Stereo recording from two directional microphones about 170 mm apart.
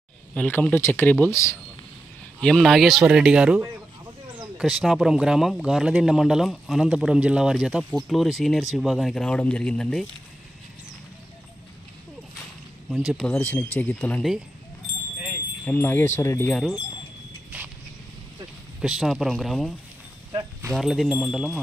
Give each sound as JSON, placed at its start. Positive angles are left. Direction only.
{"t": 0.3, "sound": "speech", "side_deg": 10}
{"t": 2.4, "sound": "speech", "side_deg": 0}
{"t": 12.9, "sound": "speech", "side_deg": 0}
{"t": 15.6, "sound": "speech", "side_deg": 10}
{"t": 17.5, "sound": "a sound", "side_deg": -10}
{"t": 18.8, "sound": "speech", "side_deg": 0}
{"t": 20.7, "sound": "speech", "side_deg": 0}